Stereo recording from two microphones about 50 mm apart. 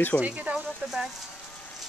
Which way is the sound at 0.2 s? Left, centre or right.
Right.